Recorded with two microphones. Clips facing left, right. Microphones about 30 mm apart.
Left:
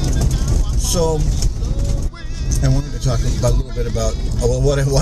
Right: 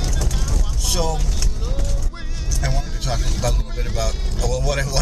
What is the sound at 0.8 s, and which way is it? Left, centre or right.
Speech, centre.